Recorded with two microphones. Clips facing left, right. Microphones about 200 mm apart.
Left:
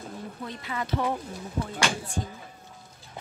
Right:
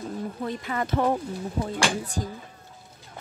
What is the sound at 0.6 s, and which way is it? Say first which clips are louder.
Speech: right 3 dB; 50° right (ahead or behind).